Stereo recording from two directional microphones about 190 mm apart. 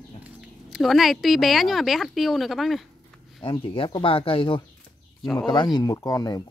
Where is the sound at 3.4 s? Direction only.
30° left (ahead or behind).